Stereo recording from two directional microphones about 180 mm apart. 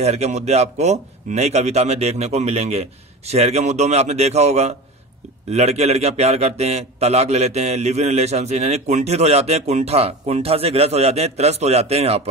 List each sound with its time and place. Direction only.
0.0 s a man's voice: 35° right (ahead or behind)